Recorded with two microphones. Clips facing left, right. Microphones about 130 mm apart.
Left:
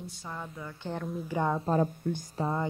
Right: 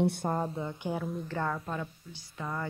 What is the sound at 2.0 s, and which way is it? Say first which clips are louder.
Speech: left 18 dB; 50° left (ahead or behind).